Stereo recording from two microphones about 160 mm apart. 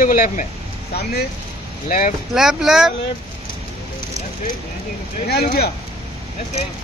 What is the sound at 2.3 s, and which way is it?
Speech, 5° right (ahead or behind).